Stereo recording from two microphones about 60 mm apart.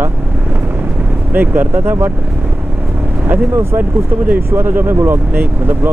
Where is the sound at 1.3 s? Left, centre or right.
Right.